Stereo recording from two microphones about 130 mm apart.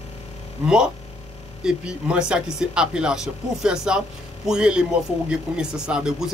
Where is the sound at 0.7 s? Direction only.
5° right (ahead or behind).